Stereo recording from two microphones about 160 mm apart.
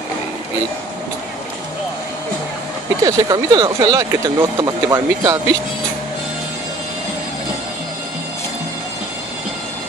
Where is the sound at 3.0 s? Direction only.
25° right (ahead or behind).